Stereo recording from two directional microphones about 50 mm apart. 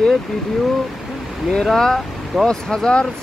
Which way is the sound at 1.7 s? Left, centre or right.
Centre.